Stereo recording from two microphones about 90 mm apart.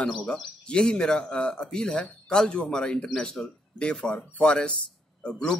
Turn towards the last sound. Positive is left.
turn(degrees=10)  # may be behind; listen again after turning